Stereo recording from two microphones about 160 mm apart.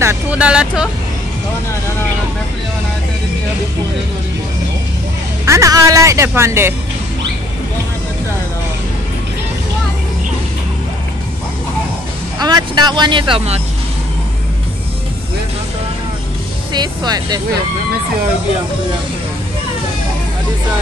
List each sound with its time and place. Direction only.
0.0 s speech: 10° right (ahead or behind)
5.4 s speech: 20° right (ahead or behind)
12.4 s speech: 25° right (ahead or behind)
16.7 s speech: 25° right (ahead or behind)